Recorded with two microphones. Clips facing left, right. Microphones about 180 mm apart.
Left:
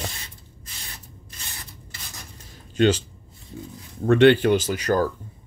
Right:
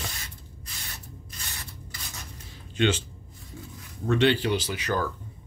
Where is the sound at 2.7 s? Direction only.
40° left (ahead or behind).